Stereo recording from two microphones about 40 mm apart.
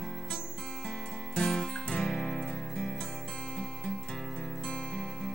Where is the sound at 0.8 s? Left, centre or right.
Centre.